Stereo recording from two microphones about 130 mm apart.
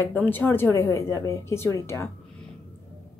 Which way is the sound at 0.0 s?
15° left (ahead or behind).